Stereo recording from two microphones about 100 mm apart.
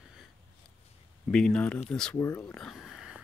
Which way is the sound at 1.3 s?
10° left (ahead or behind).